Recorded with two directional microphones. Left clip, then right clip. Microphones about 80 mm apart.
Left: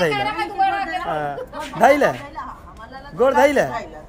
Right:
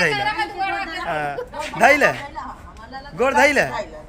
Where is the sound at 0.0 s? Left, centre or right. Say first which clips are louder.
Right 1 dB; left.